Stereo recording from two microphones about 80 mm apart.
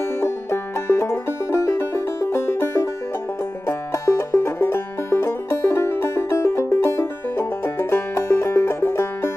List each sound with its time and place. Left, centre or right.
0.2 s music: left